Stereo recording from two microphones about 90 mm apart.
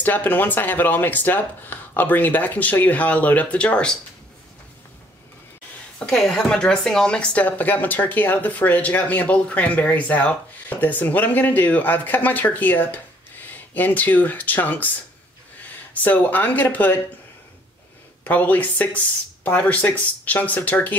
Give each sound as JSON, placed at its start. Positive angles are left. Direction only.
{"t": 0.0, "sound": "speech", "side_deg": 20}
{"t": 5.9, "sound": "speech", "side_deg": 10}
{"t": 15.9, "sound": "speech", "side_deg": 20}
{"t": 18.2, "sound": "speech", "side_deg": 20}